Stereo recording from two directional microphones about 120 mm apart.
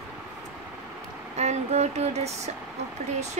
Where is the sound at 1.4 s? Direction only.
70° right (ahead or behind).